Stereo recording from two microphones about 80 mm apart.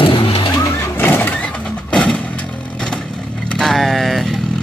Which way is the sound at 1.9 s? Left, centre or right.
Centre.